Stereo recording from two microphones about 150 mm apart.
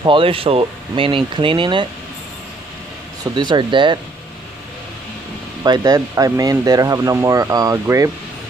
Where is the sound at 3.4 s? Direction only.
30° right (ahead or behind).